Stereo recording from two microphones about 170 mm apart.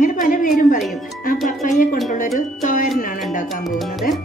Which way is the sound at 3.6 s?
Centre (ahead or behind).